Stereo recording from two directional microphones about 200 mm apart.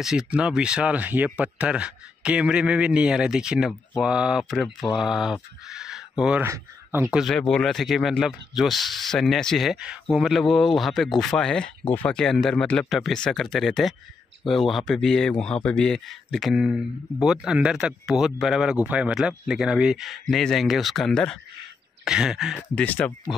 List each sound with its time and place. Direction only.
0.0 s speech: centre (ahead or behind)
22.6 s speech: 10° left (ahead or behind)